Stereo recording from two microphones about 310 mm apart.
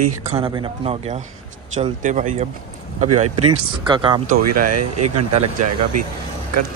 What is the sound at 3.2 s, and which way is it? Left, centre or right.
Speech, right.